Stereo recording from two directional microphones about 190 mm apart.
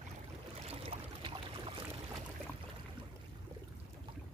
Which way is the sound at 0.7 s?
30° right (ahead or behind).